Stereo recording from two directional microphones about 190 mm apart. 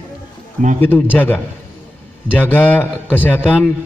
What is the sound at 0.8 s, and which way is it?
Speech, 10° left (ahead or behind).